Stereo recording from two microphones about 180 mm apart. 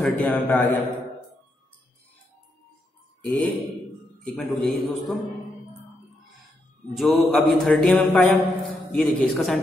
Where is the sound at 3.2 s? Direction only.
5° left (ahead or behind).